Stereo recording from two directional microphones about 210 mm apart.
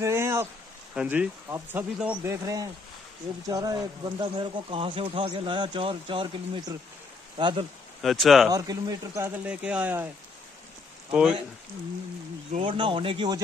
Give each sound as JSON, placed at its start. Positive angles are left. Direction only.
{"t": 0.0, "sound": "a sound", "side_deg": -10}
{"t": 0.9, "sound": "speech", "side_deg": -5}
{"t": 8.0, "sound": "speech", "side_deg": 0}
{"t": 8.5, "sound": "speech", "side_deg": -20}
{"t": 11.1, "sound": "speech", "side_deg": -5}
{"t": 12.5, "sound": "speech", "side_deg": -25}